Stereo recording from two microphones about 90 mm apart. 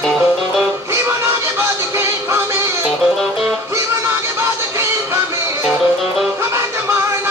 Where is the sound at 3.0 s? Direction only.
Centre (ahead or behind).